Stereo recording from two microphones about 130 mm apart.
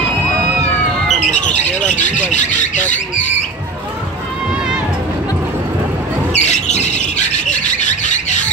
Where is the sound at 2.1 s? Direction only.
70° left (ahead or behind).